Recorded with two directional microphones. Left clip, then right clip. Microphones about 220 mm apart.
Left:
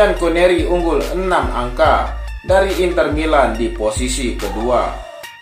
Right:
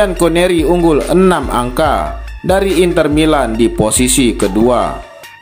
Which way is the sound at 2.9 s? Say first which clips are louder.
Right 3 dB; 35° right (ahead or behind).